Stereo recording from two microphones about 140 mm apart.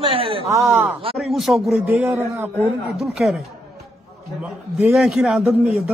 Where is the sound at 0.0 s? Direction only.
40° right (ahead or behind).